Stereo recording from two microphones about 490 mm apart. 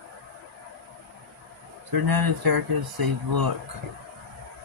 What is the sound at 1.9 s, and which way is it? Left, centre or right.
Speech, right.